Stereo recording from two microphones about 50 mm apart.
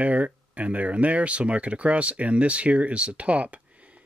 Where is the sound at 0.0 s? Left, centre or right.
Right.